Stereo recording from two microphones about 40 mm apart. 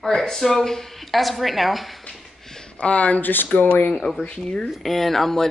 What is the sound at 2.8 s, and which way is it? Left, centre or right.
Speech, left.